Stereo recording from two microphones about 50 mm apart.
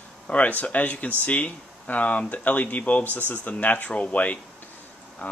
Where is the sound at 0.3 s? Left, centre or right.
Left.